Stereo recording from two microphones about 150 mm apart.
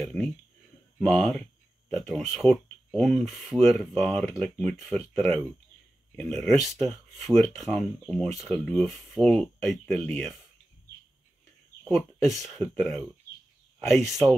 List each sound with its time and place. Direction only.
0.0 s speech: 5° left (ahead or behind)
6.1 s speech: centre (ahead or behind)
11.9 s speech: centre (ahead or behind)